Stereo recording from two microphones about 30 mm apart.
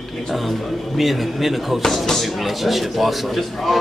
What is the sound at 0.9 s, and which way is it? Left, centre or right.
A man's voice, centre.